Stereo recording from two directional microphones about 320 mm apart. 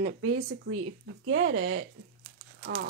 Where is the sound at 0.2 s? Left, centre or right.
Right.